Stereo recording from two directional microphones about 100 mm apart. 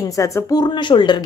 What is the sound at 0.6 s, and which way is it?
Speech, 50° left (ahead or behind).